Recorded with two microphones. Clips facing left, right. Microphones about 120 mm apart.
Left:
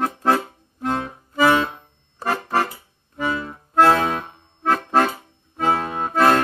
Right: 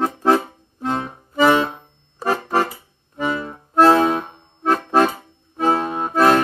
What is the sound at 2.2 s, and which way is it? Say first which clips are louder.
Accordion: right 2 dB; 15° right (ahead or behind).